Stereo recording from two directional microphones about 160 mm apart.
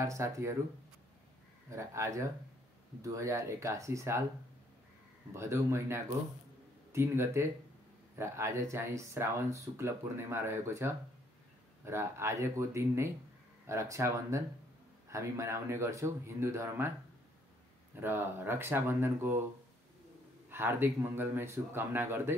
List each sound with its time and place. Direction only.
0.0 s speech: 20° right (ahead or behind)
1.7 s speech: 20° right (ahead or behind)
5.3 s speech: 15° right (ahead or behind)
18.0 s speech: 15° right (ahead or behind)
20.4 s speech: 15° right (ahead or behind)